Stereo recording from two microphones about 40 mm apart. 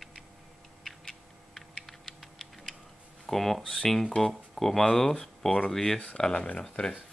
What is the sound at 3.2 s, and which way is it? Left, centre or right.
Speech, centre.